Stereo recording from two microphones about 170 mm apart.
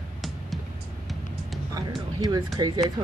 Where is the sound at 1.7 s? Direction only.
20° right (ahead or behind).